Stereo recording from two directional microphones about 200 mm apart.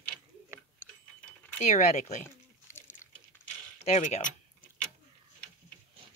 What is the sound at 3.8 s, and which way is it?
Speech, 35° left (ahead or behind).